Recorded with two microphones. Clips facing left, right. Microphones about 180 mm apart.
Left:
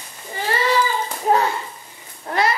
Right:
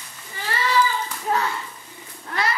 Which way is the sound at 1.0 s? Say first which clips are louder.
Left 6 dB; 35° left (ahead or behind).